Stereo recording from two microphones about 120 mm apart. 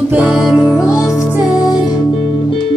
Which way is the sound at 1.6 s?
35° left (ahead or behind).